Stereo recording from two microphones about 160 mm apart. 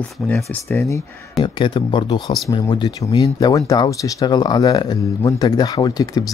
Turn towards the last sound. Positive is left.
turn(degrees=25)  # may be behind; listen again after turning